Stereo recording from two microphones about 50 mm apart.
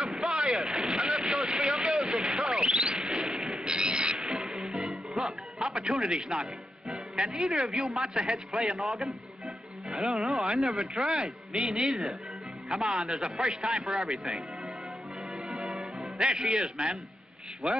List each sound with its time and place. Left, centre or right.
0.0 s vehicle: centre
1.6 s a sound: centre
3.6 s train: centre
4.2 s music: centre
6.9 s a man's voice: centre
9.9 s a man's voice: centre
10.3 s a man's voice: centre
15.4 s music: centre
16.6 s a man's voice: centre